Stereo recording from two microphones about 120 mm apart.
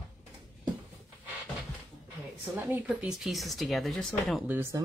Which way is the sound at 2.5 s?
15° right (ahead or behind).